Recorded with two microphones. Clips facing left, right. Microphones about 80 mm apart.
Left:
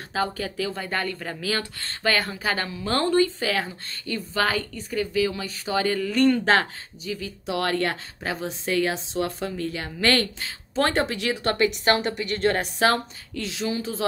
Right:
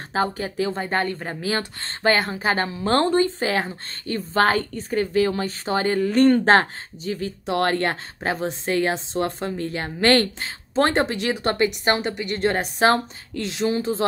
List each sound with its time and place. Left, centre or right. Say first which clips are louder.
0.1 s a woman's voice: right 3 dB; right
11.3 s a woman's voice: even; centre; by 14.0 s right